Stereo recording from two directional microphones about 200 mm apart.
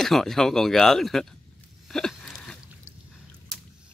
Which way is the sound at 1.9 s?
5° left (ahead or behind).